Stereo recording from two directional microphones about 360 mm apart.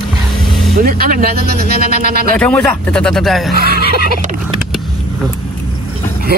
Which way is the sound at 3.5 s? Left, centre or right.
Left.